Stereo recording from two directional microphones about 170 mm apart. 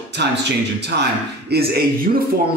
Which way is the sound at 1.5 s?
65° right (ahead or behind).